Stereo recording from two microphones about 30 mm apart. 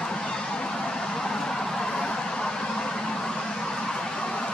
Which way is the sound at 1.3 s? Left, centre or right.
Centre.